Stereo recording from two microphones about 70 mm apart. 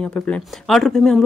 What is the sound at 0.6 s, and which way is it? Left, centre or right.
Speech, centre.